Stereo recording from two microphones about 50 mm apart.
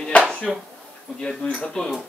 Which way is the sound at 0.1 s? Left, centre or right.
Left.